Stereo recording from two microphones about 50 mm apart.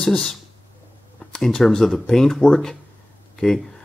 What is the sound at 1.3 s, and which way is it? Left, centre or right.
Speech, centre.